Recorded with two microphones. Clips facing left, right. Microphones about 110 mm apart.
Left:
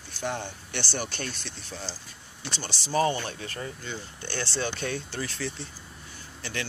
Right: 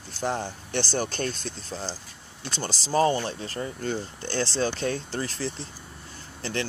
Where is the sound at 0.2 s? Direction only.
35° right (ahead or behind).